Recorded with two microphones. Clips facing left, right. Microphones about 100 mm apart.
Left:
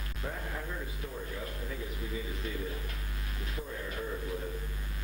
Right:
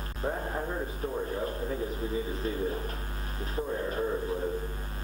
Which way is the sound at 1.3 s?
35° right (ahead or behind).